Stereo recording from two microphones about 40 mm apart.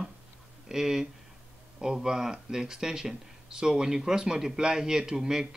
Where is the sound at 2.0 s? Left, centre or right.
Centre.